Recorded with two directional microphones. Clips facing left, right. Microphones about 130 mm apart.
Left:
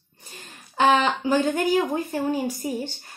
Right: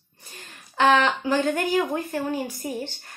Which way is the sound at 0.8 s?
15° left (ahead or behind).